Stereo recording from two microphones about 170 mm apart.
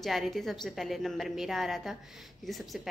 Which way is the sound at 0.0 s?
Centre (ahead or behind).